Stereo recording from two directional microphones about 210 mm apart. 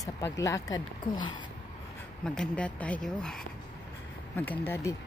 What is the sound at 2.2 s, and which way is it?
Speech, 5° left (ahead or behind).